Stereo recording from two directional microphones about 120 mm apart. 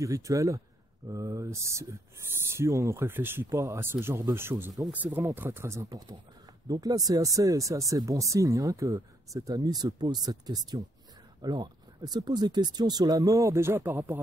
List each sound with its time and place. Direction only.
0.0 s speech: 25° right (ahead or behind)